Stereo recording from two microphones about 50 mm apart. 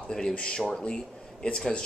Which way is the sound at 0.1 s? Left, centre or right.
Centre.